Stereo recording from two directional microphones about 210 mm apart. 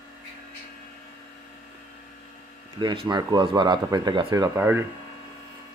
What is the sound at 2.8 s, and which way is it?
Speech, 20° right (ahead or behind).